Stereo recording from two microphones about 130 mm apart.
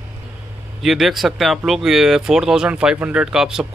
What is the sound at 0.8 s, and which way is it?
A man's voice, centre (ahead or behind).